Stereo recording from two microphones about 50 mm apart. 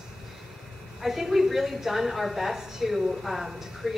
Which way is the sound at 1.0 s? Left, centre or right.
Centre.